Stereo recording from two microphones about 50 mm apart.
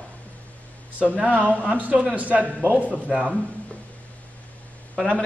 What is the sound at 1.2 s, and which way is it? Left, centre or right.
A man's voice, right.